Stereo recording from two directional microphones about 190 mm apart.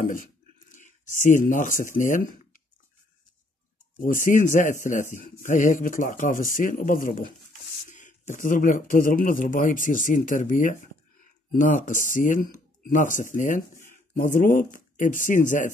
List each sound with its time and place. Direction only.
0.0 s speech: 45° left (ahead or behind)
4.0 s speech: 45° left (ahead or behind)